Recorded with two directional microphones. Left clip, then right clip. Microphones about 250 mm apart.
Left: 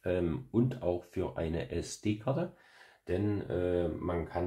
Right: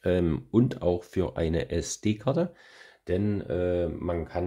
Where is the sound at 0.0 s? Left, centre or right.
Right.